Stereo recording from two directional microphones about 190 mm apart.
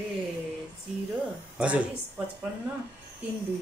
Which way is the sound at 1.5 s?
5° right (ahead or behind).